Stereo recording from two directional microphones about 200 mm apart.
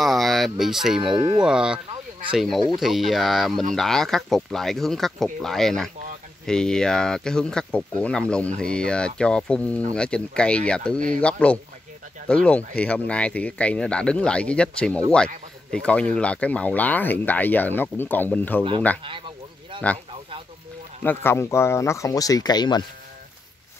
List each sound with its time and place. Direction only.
0.0 s speech: centre (ahead or behind)
1.0 s speech: 25° right (ahead or behind)
1.4 s speech: 5° right (ahead or behind)
21.0 s speech: 10° left (ahead or behind)